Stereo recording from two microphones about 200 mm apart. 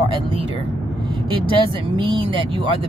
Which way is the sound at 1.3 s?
25° right (ahead or behind).